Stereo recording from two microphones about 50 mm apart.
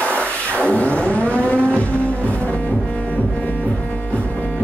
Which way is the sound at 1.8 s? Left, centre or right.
Left.